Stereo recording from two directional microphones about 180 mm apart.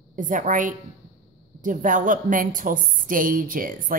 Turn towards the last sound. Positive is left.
turn(degrees=-50)  # may be behind; listen again after turning